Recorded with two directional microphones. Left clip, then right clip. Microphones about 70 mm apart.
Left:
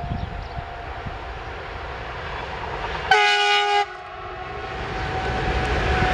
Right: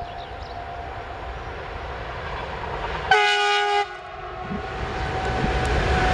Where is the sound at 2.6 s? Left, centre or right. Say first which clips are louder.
Left 1 dB; centre.